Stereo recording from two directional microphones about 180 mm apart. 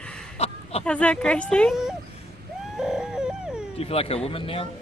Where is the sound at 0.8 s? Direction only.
5° left (ahead or behind).